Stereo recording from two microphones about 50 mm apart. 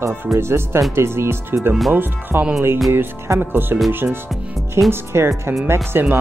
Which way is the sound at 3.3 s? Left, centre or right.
Right.